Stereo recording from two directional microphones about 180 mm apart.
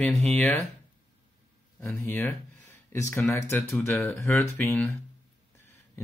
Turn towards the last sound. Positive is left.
turn(degrees=10)  # may be behind; listen again after turning